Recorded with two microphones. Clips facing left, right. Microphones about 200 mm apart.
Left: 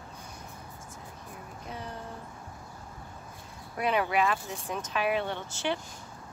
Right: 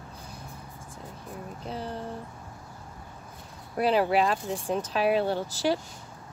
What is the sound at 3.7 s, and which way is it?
Speech, 30° right (ahead or behind).